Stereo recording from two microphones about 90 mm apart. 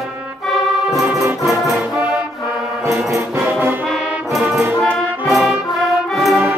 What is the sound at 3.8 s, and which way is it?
Music, centre (ahead or behind).